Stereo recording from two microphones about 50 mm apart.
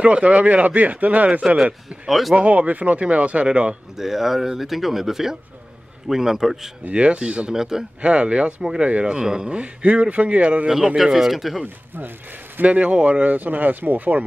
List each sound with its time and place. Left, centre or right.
0.0 s speech: right
1.6 s speech: centre
2.0 s speech: centre
2.3 s speech: right
3.9 s speech: centre
6.9 s speech: right
7.5 s speech: centre
8.0 s speech: right
11.0 s speech: centre
11.6 s speech: right
12.6 s speech: right